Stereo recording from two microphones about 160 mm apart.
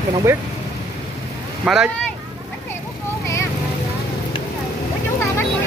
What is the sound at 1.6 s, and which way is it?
Speech, 5° right (ahead or behind).